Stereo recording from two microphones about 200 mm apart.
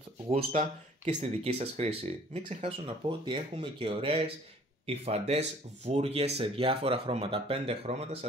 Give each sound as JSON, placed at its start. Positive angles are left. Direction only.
{"t": 0.3, "sound": "speech", "side_deg": -40}
{"t": 3.1, "sound": "speech", "side_deg": -25}